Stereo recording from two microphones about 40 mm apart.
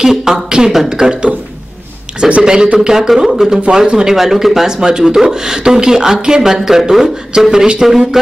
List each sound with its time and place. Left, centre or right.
0.1 s speech: centre
7.5 s speech: right